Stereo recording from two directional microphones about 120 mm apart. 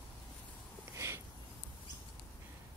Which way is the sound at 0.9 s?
20° right (ahead or behind).